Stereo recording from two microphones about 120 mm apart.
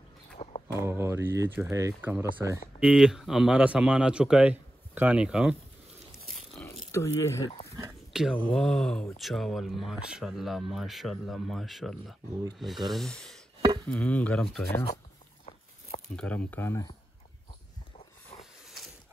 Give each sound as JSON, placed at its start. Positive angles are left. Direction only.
{"t": 0.4, "sound": "a sound", "side_deg": 60}
{"t": 0.7, "sound": "speech", "side_deg": -20}
{"t": 2.8, "sound": "a man's voice", "side_deg": -10}
{"t": 6.6, "sound": "speech", "side_deg": 25}
{"t": 8.1, "sound": "a sound", "side_deg": -5}
{"t": 8.4, "sound": "chop", "side_deg": 10}
{"t": 9.1, "sound": "speech", "side_deg": 0}
{"t": 13.8, "sound": "chop", "side_deg": 10}
{"t": 16.2, "sound": "chop", "side_deg": 10}